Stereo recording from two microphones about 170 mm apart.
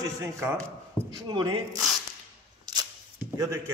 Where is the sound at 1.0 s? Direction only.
30° right (ahead or behind).